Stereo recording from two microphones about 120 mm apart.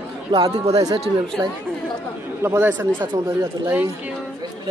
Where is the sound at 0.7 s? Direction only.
30° right (ahead or behind).